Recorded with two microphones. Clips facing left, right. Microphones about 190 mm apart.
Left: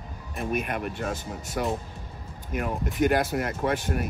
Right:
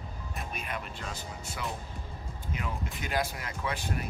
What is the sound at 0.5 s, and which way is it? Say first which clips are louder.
Speech: left 11 dB; 55° left (ahead or behind).